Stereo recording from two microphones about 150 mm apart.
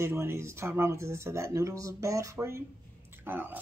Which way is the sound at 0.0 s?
15° right (ahead or behind).